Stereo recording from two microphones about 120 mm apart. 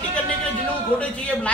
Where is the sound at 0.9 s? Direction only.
10° left (ahead or behind).